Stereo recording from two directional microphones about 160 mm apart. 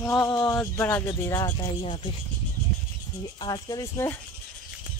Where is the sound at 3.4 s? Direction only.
25° left (ahead or behind).